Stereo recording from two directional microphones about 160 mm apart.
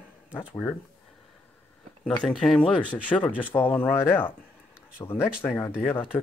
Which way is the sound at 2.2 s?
5° left (ahead or behind).